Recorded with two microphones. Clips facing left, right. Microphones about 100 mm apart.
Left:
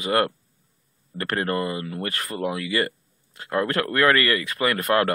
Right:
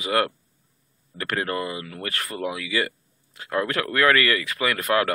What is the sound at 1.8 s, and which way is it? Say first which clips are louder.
Speech: left 3 dB; 25° left (ahead or behind).